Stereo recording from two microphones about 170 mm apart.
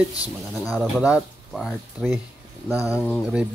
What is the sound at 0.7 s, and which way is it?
Speech, 5° right (ahead or behind).